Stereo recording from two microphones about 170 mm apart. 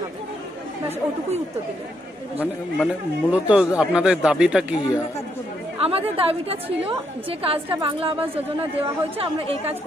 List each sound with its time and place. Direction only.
2.8 s speech: 5° right (ahead or behind)
5.8 s a woman's voice: 35° right (ahead or behind)